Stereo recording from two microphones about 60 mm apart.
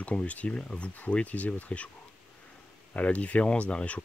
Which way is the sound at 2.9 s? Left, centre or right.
Left.